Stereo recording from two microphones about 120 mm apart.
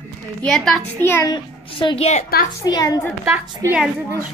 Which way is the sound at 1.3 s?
45° left (ahead or behind).